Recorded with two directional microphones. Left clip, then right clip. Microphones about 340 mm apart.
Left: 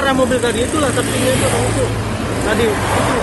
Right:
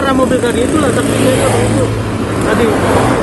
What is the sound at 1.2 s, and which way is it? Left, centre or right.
Speech, right.